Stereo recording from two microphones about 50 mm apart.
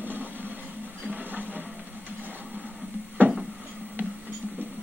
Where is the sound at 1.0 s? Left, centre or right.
Right.